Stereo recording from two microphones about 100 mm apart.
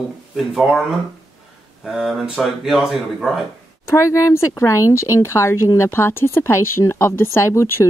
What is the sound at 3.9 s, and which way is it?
Speech, 30° left (ahead or behind).